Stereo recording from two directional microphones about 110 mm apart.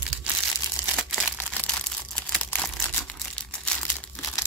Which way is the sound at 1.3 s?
10° left (ahead or behind).